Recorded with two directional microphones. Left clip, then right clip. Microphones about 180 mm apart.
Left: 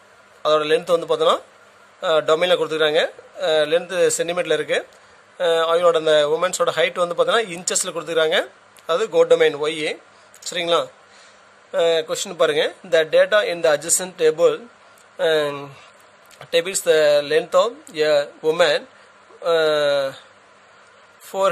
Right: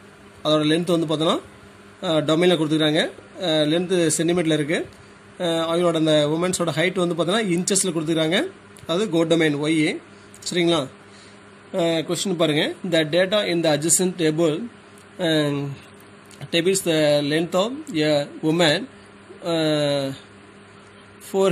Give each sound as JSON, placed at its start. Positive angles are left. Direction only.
{"t": 0.4, "sound": "a man's voice", "side_deg": 45}
{"t": 12.1, "sound": "a man's voice", "side_deg": 50}
{"t": 21.3, "sound": "a man's voice", "side_deg": 55}